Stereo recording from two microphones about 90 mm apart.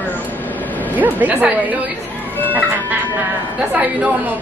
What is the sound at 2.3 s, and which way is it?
Music, 20° left (ahead or behind).